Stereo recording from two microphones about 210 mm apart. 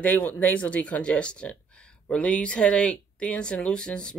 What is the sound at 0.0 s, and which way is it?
Speech, 5° left (ahead or behind).